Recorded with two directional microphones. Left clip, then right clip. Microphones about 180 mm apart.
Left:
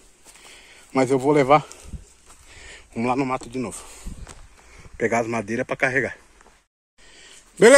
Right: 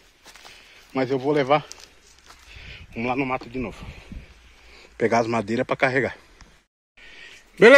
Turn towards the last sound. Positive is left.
turn(degrees=10)  # may be behind; listen again after turning